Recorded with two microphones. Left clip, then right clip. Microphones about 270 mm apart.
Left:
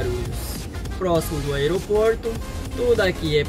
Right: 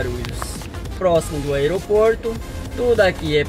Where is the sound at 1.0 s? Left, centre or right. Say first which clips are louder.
Right 5 dB; centre.